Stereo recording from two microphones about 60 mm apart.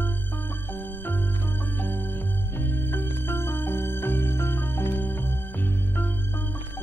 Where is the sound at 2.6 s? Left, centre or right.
Left.